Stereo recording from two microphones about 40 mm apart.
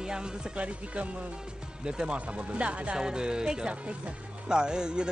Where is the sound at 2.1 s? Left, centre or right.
Right.